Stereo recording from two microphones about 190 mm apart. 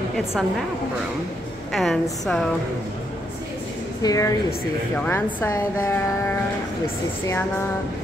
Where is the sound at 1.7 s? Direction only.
Centre (ahead or behind).